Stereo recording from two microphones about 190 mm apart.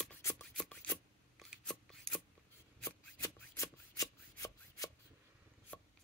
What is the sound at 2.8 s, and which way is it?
Shuffling cards, 15° left (ahead or behind).